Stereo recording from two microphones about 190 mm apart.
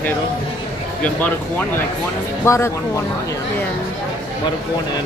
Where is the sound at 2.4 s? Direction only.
15° left (ahead or behind).